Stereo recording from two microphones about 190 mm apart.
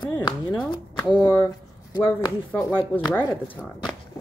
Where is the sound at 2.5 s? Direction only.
10° left (ahead or behind).